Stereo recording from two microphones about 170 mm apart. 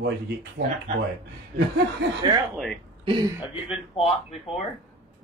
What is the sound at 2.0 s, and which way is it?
Speech, 90° right.